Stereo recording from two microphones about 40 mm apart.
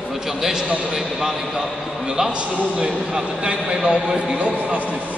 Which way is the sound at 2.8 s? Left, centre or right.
Centre.